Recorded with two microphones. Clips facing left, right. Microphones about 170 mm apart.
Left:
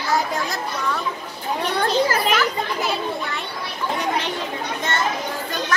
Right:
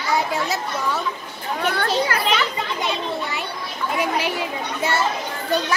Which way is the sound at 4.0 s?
10° right (ahead or behind).